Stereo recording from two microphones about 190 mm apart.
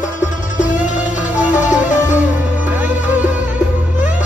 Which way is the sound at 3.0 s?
10° right (ahead or behind).